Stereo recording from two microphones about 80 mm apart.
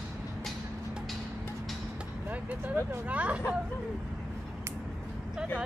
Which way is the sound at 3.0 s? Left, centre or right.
Centre.